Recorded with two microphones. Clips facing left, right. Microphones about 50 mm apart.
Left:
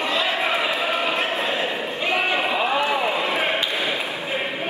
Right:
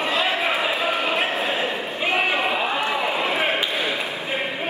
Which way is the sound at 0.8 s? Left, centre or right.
Right.